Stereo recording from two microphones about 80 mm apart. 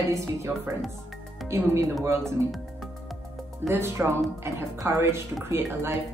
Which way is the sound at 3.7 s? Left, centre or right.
Right.